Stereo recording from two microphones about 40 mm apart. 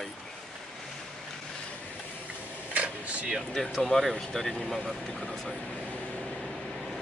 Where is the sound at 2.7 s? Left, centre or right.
Right.